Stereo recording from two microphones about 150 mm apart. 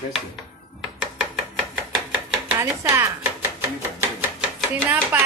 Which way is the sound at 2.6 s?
15° right (ahead or behind).